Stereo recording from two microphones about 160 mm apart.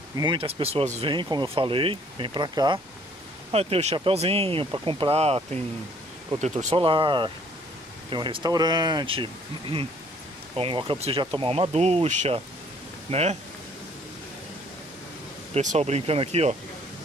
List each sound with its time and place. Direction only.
0.2 s speech: 30° right (ahead or behind)
3.5 s speech: 40° right (ahead or behind)
15.5 s speech: 45° right (ahead or behind)